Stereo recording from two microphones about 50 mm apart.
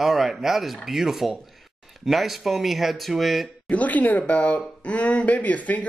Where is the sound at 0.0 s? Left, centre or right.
Centre.